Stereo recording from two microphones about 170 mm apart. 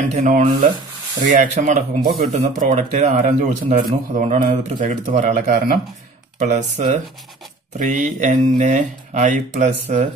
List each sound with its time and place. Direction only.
0.1 s speech: 45° right (ahead or behind)